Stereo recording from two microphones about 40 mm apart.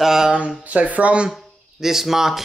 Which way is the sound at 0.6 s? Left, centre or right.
Right.